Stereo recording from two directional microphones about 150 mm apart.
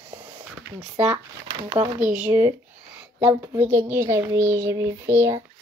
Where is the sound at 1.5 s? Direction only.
35° right (ahead or behind).